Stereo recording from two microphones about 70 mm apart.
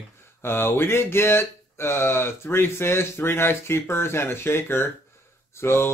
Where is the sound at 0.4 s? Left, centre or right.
Left.